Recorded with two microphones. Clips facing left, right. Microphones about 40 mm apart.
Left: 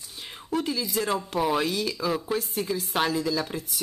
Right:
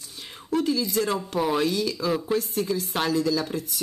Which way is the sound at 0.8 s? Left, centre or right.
Centre.